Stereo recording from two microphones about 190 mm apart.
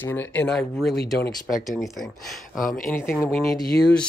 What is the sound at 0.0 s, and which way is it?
Speech, 10° left (ahead or behind).